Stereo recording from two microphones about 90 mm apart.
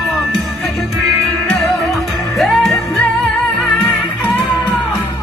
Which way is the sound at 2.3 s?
Centre (ahead or behind).